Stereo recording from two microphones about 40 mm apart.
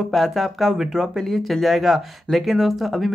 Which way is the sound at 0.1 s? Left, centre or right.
Centre.